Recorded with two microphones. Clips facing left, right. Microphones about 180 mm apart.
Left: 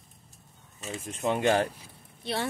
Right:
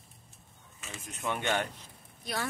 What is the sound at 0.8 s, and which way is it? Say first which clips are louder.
A woman's voice: left 7 dB; 35° left (ahead or behind).